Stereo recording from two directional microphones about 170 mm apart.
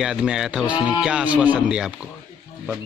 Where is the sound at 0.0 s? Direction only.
5° right (ahead or behind).